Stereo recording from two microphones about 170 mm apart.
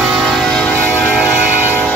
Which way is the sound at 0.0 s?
Centre (ahead or behind).